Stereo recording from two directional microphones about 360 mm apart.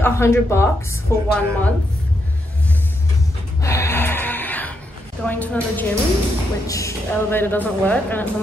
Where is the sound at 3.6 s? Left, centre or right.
Centre.